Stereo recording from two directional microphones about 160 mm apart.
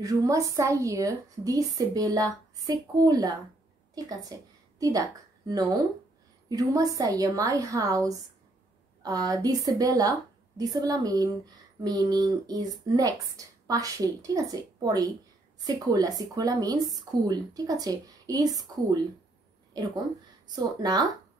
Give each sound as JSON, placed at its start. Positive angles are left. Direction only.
{"t": 0.0, "sound": "a woman's voice", "side_deg": -20}
{"t": 20.5, "sound": "speech", "side_deg": -25}